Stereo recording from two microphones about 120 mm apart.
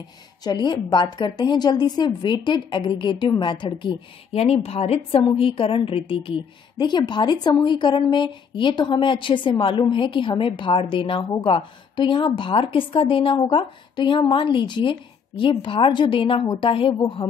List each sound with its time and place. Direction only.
0.4 s a woman's voice: 35° left (ahead or behind)
4.3 s a woman's voice: 60° left (ahead or behind)